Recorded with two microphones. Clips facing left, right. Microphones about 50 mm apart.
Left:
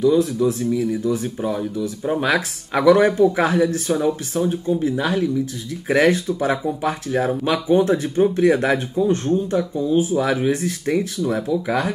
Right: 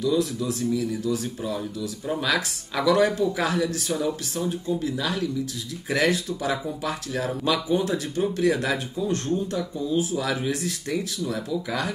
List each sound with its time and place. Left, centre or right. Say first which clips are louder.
0.0 s speech: left 7 dB; left